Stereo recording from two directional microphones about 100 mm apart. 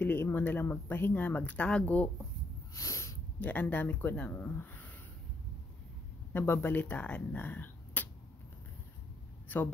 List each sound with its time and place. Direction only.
0.0 s speech: 20° left (ahead or behind)
2.7 s a sound: 30° left (ahead or behind)
3.3 s speech: 20° left (ahead or behind)
6.3 s speech: 25° left (ahead or behind)
9.5 s speech: 20° left (ahead or behind)